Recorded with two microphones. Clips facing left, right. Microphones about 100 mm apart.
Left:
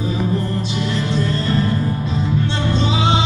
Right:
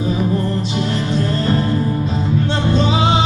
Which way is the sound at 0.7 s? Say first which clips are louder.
Even; 40° right (ahead or behind).